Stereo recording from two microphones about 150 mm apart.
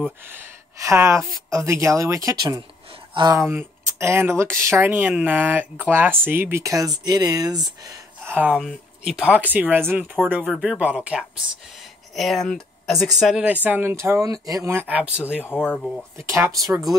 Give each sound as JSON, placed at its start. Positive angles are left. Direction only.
{"t": 0.2, "sound": "speech", "side_deg": -15}
{"t": 8.5, "sound": "speech", "side_deg": 0}
{"t": 15.6, "sound": "speech", "side_deg": 0}
{"t": 16.2, "sound": "speech", "side_deg": -20}